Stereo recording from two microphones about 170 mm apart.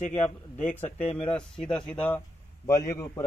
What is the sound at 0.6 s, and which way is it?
Speech, 10° left (ahead or behind).